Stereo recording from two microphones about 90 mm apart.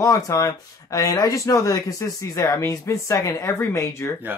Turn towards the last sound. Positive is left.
turn(degrees=35)  # may be behind; listen again after turning